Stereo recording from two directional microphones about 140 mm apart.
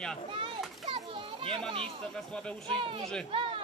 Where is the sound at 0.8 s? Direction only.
45° right (ahead or behind).